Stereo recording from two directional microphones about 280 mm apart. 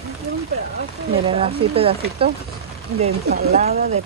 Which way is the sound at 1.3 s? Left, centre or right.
Centre.